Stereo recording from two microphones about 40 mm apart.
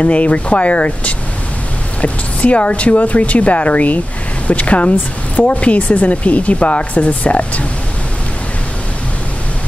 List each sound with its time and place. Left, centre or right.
0.0 s a woman's voice: left